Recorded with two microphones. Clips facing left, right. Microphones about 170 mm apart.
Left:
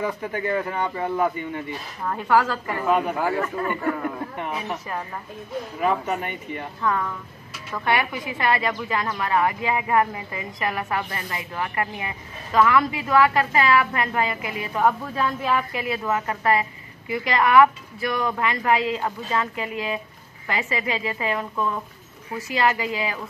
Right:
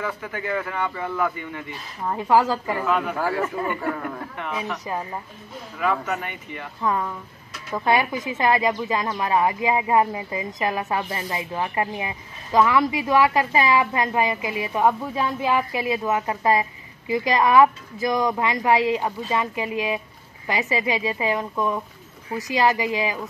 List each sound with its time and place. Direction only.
0.0 s a man's voice: 25° left (ahead or behind)
2.1 s a woman's voice: 25° right (ahead or behind)
2.5 s a woman's voice: 15° right (ahead or behind)
2.9 s a man's voice: 20° left (ahead or behind)
3.3 s a woman's voice: 15° right (ahead or behind)
3.9 s speech: 5° left (ahead or behind)
4.4 s speech: 20° left (ahead or behind)
4.8 s a woman's voice: 20° right (ahead or behind)
5.9 s a man's voice: 20° left (ahead or behind)
6.8 s a woman's voice: 20° right (ahead or behind)